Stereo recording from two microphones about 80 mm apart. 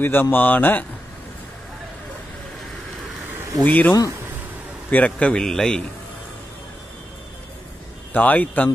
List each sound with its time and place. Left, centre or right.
0.0 s speech: left
3.6 s speech: left
4.9 s a man's voice: centre
8.1 s speech: centre